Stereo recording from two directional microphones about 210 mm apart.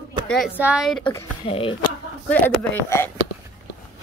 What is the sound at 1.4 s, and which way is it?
Speech, 25° left (ahead or behind).